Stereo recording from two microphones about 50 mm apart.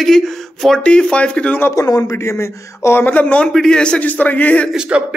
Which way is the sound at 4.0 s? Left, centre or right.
Left.